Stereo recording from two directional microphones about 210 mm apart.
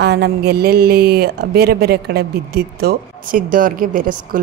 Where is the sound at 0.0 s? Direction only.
50° right (ahead or behind).